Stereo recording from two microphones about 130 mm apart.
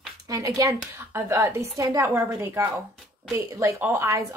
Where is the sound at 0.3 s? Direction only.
25° right (ahead or behind).